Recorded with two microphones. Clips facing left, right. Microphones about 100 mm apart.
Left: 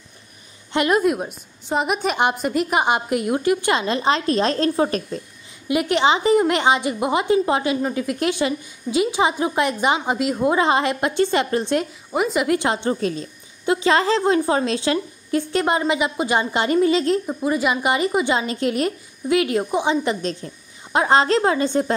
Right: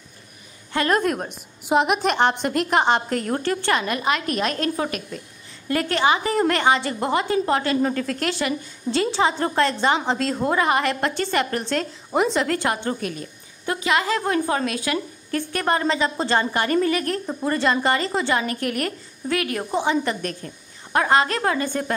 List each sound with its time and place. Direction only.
0.7 s a woman's voice: 10° left (ahead or behind); by 5.2 s 35° left (ahead or behind)
5.7 s a woman's voice: 15° left (ahead or behind)
12.1 s speech: 5° left (ahead or behind)
12.4 s a woman's voice: 20° left (ahead or behind)
17.3 s a woman's voice: 5° left (ahead or behind); by 21.9 s 20° left (ahead or behind)